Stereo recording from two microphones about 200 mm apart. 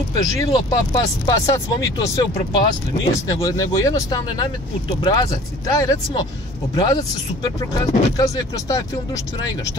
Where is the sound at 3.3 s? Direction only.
15° left (ahead or behind).